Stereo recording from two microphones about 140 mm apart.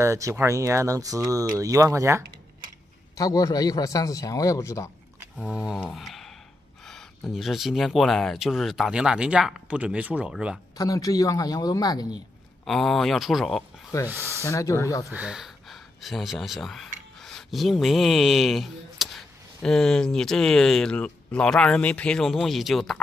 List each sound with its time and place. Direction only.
0.0 s speech: 20° right (ahead or behind)
3.2 s a man's voice: 25° left (ahead or behind)
5.4 s speech: 5° right (ahead or behind)
5.8 s a sound: centre (ahead or behind)
7.3 s speech: centre (ahead or behind)
10.8 s a man's voice: 25° left (ahead or behind)
12.6 s speech: centre (ahead or behind)
14.0 s speech: 15° right (ahead or behind)
14.4 s a man's voice: 20° left (ahead or behind)
15.0 s speech: 5° right (ahead or behind)